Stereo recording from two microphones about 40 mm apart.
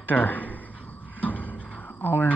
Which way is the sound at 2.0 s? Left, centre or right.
Left.